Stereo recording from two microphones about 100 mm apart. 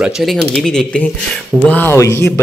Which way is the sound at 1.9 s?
30° left (ahead or behind).